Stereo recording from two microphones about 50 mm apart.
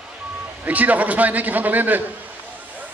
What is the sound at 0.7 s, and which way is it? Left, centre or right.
A man's voice, right.